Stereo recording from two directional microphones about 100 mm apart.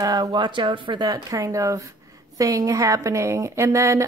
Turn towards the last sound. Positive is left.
turn(degrees=-30)  # may be behind; listen again after turning